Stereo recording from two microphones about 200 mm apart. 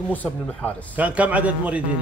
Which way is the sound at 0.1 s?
10° left (ahead or behind).